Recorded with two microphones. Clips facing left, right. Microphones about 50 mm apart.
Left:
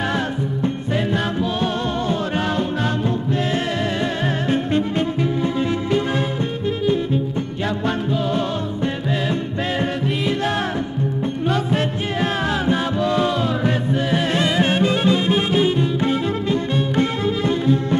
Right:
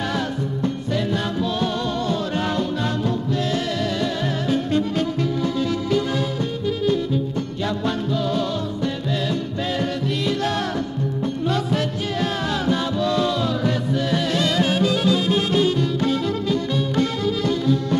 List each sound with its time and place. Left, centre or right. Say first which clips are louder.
0.9 s music: left 3 dB; left
3.5 s music: left 2 dB; left
7.6 s music: left 2 dB; left
9.8 s music: left 2 dB; left